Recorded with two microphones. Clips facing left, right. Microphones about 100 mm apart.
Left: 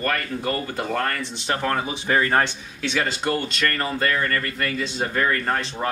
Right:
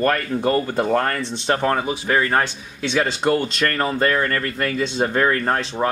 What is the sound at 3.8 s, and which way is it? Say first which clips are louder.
Speech: right 7 dB; 30° right (ahead or behind).